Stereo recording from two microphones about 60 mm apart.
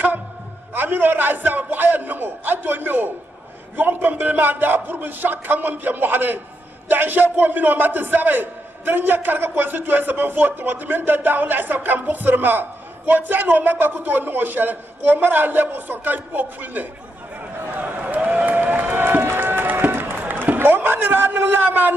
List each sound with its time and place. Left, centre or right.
0.7 s a man's voice: right
18.5 s run: right